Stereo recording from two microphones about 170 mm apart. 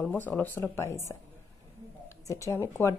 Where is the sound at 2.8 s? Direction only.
15° left (ahead or behind).